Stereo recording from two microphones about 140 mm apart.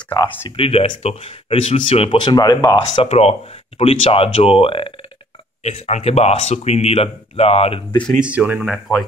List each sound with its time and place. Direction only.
0.6 s speech: 40° left (ahead or behind)
3.0 s speech: 50° left (ahead or behind)
5.6 s speech: 50° left (ahead or behind)
8.1 s speech: 10° right (ahead or behind)